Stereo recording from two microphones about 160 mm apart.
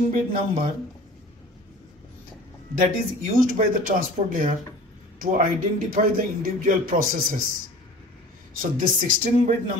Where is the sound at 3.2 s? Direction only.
55° right (ahead or behind).